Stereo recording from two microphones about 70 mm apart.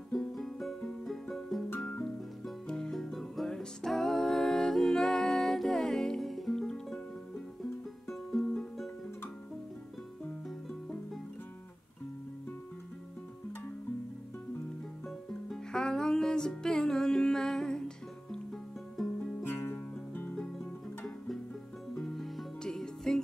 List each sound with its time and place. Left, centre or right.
0.1 s music: centre
8.1 s music: centre
15.5 s music: centre
19.4 s music: left
21.9 s music: centre